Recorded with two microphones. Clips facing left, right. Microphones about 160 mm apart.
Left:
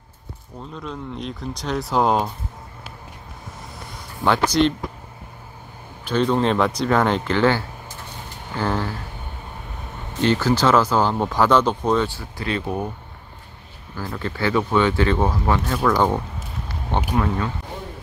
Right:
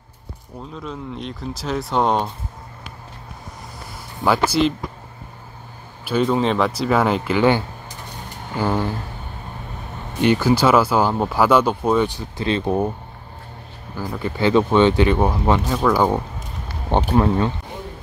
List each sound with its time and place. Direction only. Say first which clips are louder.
0.7 s speech: even; centre (ahead or behind)
4.5 s speech: even; 5° right (ahead or behind)
6.0 s speech: right 1 dB; 5° right (ahead or behind)
10.1 s speech: right 2 dB; 15° right (ahead or behind); by 12.9 s 30° right (ahead or behind)
13.9 s speech: right 3 dB; 15° right (ahead or behind)
17.1 s speech: right 5 dB; 30° right (ahead or behind)